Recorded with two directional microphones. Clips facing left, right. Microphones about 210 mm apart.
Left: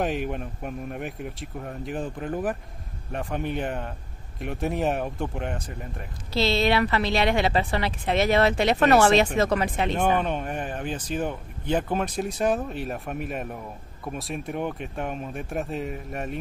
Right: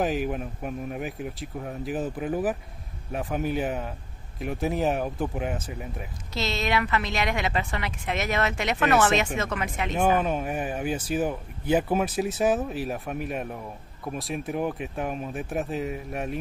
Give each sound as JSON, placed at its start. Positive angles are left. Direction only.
{"t": 0.0, "sound": "speech", "side_deg": 0}
{"t": 6.3, "sound": "a woman's voice", "side_deg": 30}
{"t": 9.9, "sound": "speech", "side_deg": -5}